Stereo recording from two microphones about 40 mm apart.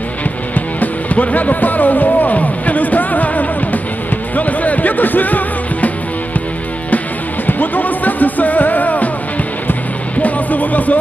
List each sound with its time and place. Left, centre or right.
0.6 s music: left
7.4 s music: left
10.2 s music: left